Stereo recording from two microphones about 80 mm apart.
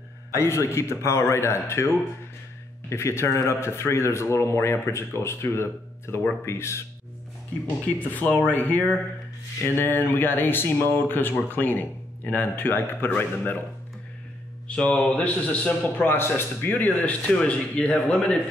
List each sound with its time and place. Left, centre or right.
0.3 s speech: left
2.9 s speech: left
7.6 s speech: left
14.8 s a man's voice: centre